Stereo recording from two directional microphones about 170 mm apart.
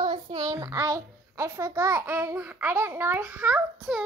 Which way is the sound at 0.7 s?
15° right (ahead or behind).